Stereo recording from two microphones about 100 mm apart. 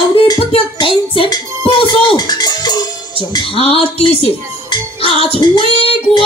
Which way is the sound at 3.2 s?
65° left (ahead or behind).